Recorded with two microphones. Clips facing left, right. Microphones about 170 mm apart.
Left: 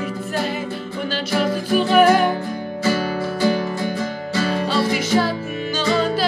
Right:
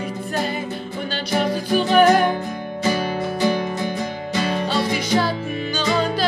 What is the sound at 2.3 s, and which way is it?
Music, 20° right (ahead or behind).